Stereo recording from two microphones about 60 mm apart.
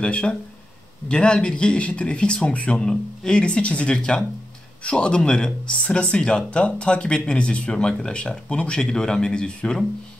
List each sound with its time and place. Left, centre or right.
0.0 s speech: centre